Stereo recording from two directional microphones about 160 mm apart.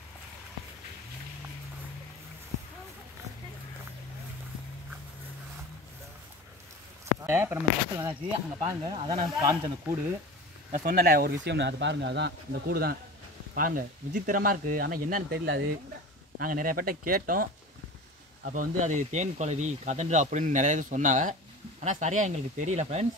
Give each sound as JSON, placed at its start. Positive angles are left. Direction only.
{"t": 7.2, "sound": "speech", "side_deg": -15}
{"t": 8.6, "sound": "speech", "side_deg": -25}
{"t": 10.7, "sound": "speech", "side_deg": -60}
{"t": 13.6, "sound": "speech", "side_deg": -60}
{"t": 16.3, "sound": "speech", "side_deg": -60}